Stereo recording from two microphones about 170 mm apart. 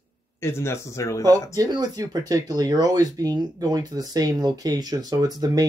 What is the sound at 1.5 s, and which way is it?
Speech, 20° right (ahead or behind).